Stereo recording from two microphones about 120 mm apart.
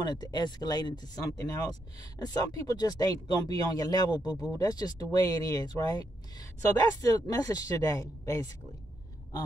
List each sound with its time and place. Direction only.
0.0 s speech: 35° left (ahead or behind)